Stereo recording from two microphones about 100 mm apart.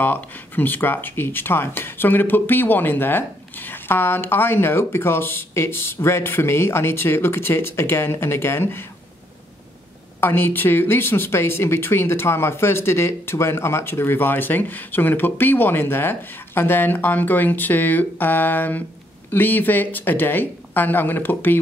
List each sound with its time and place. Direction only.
0.0 s speech: 20° left (ahead or behind)
10.2 s speech: 20° left (ahead or behind)